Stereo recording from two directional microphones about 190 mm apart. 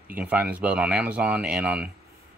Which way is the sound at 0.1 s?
10° right (ahead or behind).